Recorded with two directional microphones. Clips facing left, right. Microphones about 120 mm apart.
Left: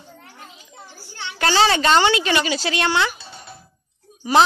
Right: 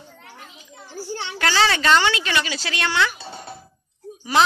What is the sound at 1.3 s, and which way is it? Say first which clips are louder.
A woman's voice: left 3 dB; 25° left (ahead or behind).